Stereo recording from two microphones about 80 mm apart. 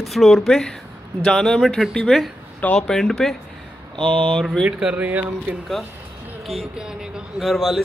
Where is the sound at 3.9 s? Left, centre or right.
Right.